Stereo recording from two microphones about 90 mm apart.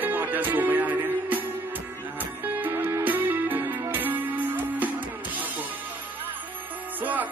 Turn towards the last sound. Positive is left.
turn(degrees=-20)  # may be behind; listen again after turning